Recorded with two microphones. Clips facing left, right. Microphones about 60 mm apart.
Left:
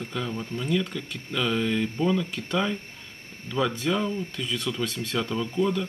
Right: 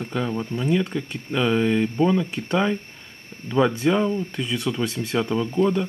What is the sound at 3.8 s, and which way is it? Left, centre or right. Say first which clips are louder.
Speech: right 6 dB; right.